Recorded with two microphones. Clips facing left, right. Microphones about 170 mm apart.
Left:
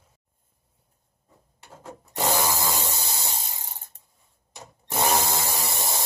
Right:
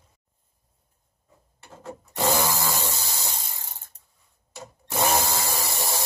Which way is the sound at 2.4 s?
15° left (ahead or behind).